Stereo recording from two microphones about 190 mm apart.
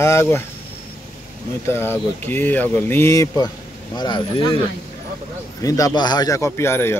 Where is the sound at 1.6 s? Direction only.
10° left (ahead or behind).